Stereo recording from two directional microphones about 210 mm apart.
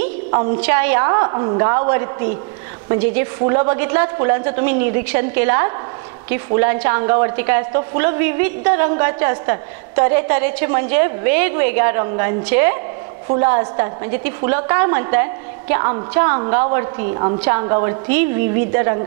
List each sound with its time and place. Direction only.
0.6 s a woman's voice: 15° right (ahead or behind)
1.0 s a woman's voice: 25° right (ahead or behind)